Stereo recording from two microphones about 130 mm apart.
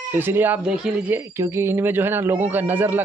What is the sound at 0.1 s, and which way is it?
Speech, 15° right (ahead or behind).